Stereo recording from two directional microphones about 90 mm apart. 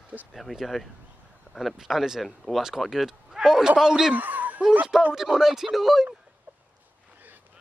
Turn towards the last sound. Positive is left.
turn(degrees=0)  # may be behind; listen again after turning